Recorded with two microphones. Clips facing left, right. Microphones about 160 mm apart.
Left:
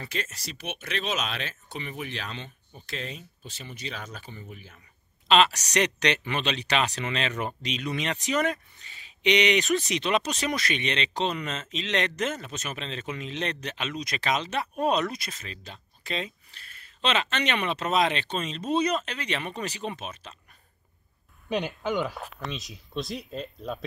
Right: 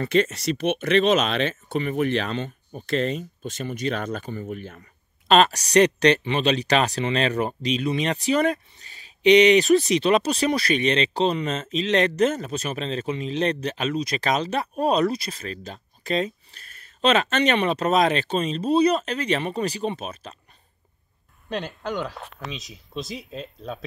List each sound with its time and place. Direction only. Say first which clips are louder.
0.0 s speech: right 14 dB; 65° right (ahead or behind)
1.8 s speech: right 13 dB; 55° right (ahead or behind)
3.0 s speech: right 12 dB; 65° right (ahead or behind)
5.3 s speech: right 5 dB; 40° right (ahead or behind)
21.5 s speech: left 1 dB; centre (ahead or behind)